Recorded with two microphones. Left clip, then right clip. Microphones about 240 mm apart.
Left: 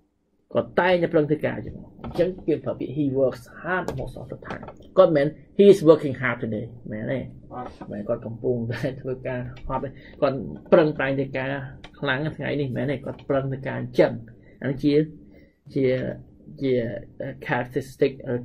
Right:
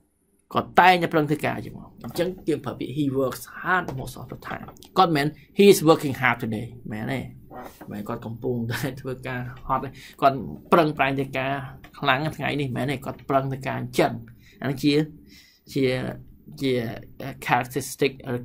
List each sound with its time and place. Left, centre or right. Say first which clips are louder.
0.5 s speech: right 4 dB; centre
4.9 s speech: left 3 dB; centre